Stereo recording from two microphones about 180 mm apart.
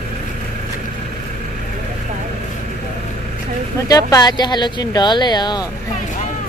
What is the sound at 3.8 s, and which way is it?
Speech, 20° left (ahead or behind).